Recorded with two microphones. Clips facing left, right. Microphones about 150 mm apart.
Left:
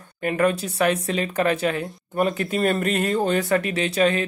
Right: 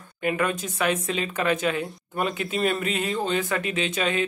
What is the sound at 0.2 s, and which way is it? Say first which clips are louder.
Speech: left 4 dB; 40° left (ahead or behind).